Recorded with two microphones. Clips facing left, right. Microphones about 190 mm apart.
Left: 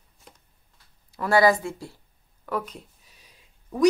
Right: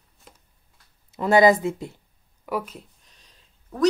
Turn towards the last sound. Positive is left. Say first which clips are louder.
# left 4 dB
turn(degrees=10)  # may be behind; listen again after turning